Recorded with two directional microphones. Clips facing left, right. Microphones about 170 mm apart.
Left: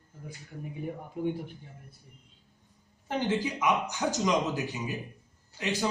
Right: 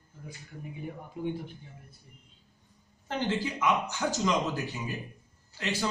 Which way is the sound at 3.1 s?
15° left (ahead or behind).